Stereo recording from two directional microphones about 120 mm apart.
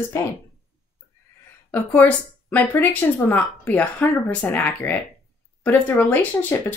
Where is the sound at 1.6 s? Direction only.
15° left (ahead or behind).